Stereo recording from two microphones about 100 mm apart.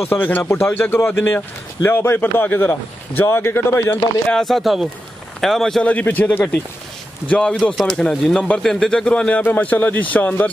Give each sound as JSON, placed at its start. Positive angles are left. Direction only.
{"t": 0.1, "sound": "a man's voice", "side_deg": 20}
{"t": 4.3, "sound": "speech", "side_deg": 5}
{"t": 5.9, "sound": "speech", "side_deg": 15}